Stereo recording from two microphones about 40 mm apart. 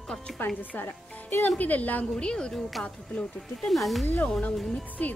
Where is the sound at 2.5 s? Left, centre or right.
Centre.